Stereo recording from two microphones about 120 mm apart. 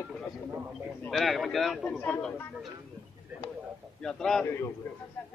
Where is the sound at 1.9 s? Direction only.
20° left (ahead or behind).